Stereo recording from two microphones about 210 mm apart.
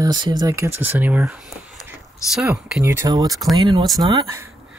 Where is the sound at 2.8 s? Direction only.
15° right (ahead or behind).